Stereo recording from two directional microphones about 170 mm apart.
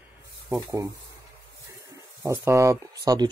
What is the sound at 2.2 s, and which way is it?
Speech, 15° right (ahead or behind).